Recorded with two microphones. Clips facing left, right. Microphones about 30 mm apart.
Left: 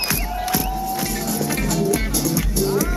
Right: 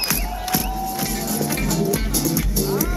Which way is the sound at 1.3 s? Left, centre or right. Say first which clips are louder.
Left 1 dB; centre.